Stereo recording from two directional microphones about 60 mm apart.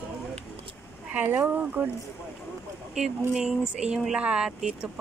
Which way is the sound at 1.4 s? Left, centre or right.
Right.